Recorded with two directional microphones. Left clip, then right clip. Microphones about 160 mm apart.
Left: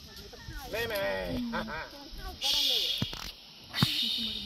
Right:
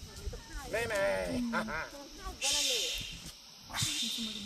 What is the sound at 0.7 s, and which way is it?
Speech, 65° left (ahead or behind).